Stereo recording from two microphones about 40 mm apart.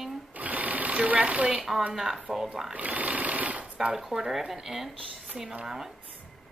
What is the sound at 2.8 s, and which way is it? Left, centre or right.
Speech, right.